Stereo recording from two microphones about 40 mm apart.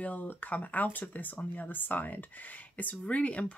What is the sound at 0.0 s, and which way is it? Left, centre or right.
Speech, left.